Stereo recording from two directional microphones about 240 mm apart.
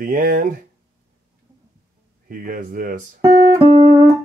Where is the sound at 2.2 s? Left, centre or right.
Right.